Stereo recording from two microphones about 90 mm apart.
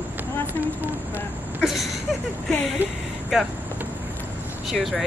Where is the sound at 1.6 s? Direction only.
5° right (ahead or behind).